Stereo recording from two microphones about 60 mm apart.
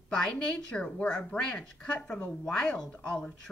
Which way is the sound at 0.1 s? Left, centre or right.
Centre.